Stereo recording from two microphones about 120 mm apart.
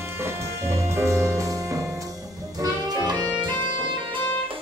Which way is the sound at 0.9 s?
25° right (ahead or behind).